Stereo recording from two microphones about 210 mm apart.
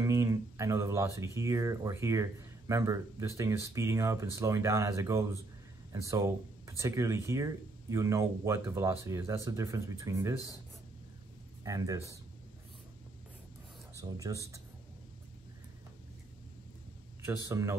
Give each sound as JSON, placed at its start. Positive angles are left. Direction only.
{"t": 0.0, "sound": "speech", "side_deg": -15}
{"t": 11.6, "sound": "speech", "side_deg": -15}
{"t": 13.9, "sound": "speech", "side_deg": -15}
{"t": 17.2, "sound": "speech", "side_deg": -15}